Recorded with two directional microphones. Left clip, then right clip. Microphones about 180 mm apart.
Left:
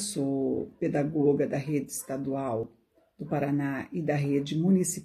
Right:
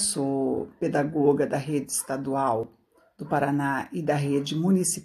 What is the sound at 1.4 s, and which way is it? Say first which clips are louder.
Speech: right 3 dB; 50° right (ahead or behind).